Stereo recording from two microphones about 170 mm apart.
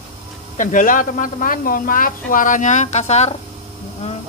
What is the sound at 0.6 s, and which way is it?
Speech, 50° left (ahead or behind).